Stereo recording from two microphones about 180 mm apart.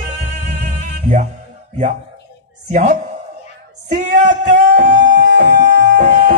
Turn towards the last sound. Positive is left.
turn(degrees=-45)  # may be behind; listen again after turning